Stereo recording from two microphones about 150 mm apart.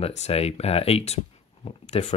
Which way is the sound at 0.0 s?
40° left (ahead or behind).